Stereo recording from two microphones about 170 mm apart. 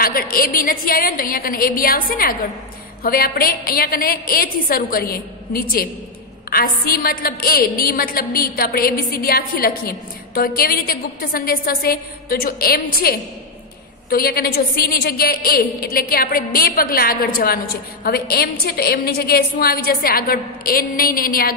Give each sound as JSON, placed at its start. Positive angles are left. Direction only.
{"t": 0.0, "sound": "a woman's voice", "side_deg": 60}